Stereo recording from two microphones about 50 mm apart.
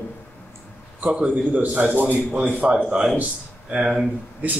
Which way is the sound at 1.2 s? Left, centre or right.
Right.